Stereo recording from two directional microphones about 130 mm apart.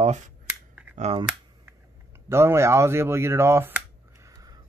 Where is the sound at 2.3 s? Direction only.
20° right (ahead or behind).